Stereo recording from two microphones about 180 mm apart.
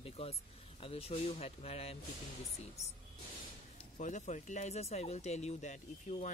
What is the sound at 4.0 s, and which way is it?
Speech, 40° left (ahead or behind).